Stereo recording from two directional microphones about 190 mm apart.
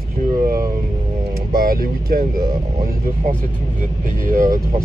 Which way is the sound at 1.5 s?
50° right (ahead or behind).